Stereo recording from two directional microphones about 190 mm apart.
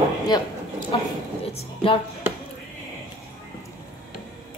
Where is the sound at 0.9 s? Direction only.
25° left (ahead or behind).